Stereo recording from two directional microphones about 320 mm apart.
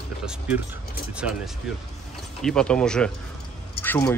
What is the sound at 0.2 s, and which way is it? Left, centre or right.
Speech, centre.